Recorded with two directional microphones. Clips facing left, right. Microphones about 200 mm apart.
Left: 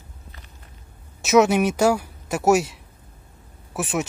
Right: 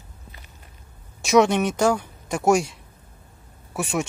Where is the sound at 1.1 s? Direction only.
5° left (ahead or behind).